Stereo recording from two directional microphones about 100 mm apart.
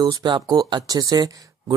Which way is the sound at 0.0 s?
45° right (ahead or behind).